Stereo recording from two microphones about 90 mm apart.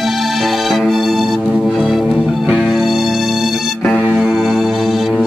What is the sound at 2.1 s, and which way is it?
Music, 15° right (ahead or behind).